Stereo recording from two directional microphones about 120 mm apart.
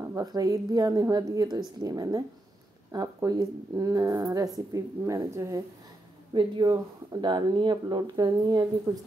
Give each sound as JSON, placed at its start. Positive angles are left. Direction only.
{"t": 0.1, "sound": "a woman's voice", "side_deg": -30}
{"t": 6.3, "sound": "speech", "side_deg": -40}